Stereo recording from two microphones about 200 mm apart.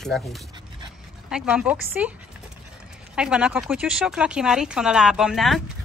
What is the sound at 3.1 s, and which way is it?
Speech, 5° right (ahead or behind).